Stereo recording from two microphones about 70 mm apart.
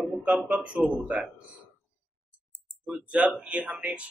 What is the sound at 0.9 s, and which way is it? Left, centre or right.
Speech, centre.